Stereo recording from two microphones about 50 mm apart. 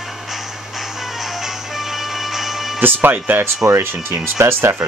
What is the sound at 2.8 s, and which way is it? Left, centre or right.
Speech, right.